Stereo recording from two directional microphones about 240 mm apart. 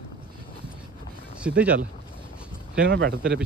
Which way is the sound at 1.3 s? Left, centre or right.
Centre.